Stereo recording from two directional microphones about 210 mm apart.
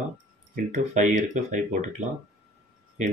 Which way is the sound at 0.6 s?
35° right (ahead or behind).